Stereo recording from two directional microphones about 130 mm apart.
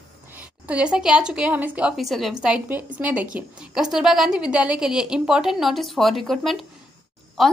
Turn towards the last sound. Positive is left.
turn(degrees=0)  # may be behind; listen again after turning